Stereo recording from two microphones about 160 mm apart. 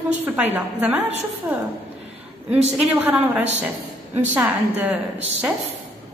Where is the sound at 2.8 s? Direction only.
10° right (ahead or behind).